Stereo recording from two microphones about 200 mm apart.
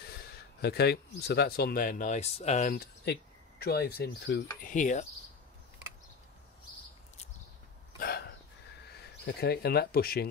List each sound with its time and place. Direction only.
0.1 s speech: 50° left (ahead or behind); by 2.7 s 35° left (ahead or behind)
2.7 s speech: 50° left (ahead or behind)
4.6 s a sound: 40° left (ahead or behind)
8.0 s hiccup: 50° left (ahead or behind)
9.0 s speech: 55° left (ahead or behind)